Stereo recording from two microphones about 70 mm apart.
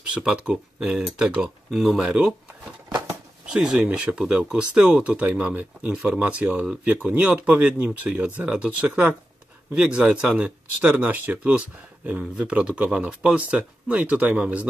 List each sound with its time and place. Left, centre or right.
0.2 s speech: centre
3.5 s speech: centre